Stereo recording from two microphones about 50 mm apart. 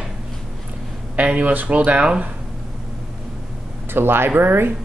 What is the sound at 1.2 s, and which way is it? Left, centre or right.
Speech, right.